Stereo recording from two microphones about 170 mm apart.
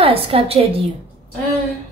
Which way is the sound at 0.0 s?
35° right (ahead or behind).